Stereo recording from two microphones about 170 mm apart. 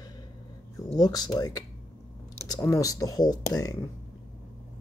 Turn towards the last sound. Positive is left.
turn(degrees=20)  # may be behind; listen again after turning